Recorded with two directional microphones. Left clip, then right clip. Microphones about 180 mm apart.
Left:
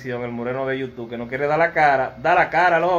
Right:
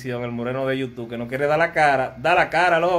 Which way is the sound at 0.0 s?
10° right (ahead or behind).